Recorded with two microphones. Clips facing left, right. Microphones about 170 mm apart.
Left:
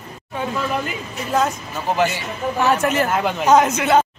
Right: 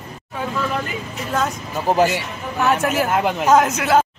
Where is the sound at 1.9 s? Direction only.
40° right (ahead or behind).